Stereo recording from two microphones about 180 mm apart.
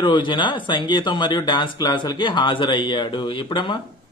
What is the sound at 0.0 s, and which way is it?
A man's voice, 25° left (ahead or behind).